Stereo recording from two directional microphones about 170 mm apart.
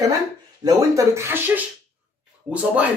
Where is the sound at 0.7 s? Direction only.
20° right (ahead or behind).